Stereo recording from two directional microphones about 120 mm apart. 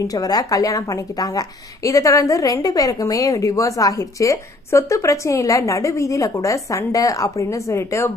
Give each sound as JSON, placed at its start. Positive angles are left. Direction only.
{"t": 0.1, "sound": "a woman's voice", "side_deg": 30}